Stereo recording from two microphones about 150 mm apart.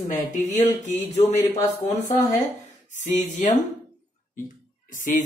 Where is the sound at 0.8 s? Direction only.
50° left (ahead or behind).